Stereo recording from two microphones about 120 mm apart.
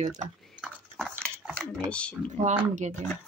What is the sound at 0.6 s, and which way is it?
Dog, 5° right (ahead or behind).